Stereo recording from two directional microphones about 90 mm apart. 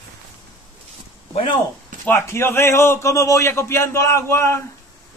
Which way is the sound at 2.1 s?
30° left (ahead or behind).